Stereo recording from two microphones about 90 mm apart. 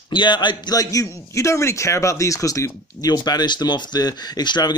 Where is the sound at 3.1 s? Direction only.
50° left (ahead or behind).